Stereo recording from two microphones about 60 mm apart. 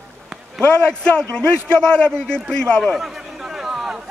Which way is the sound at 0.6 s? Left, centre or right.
Centre.